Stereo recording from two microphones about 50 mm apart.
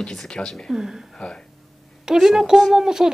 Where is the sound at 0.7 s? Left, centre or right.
Centre.